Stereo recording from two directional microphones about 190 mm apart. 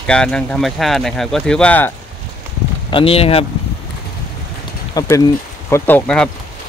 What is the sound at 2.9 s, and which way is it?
Speech, 30° left (ahead or behind).